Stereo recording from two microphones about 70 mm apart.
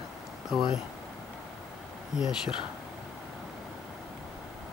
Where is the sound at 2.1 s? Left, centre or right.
Centre.